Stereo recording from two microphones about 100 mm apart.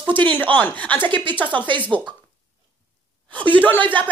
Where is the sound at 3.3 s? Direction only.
15° left (ahead or behind).